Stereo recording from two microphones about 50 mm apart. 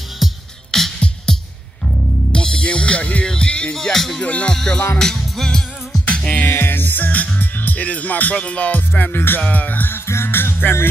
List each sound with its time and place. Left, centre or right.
0.2 s music: centre
0.7 s music: centre; by 3.3 s left
3.3 s speech: centre
3.7 s speech: centre
4.2 s music: left
4.5 s speech: centre
4.9 s music: centre
6.0 s music: left
6.4 s music: left
10.0 s music: left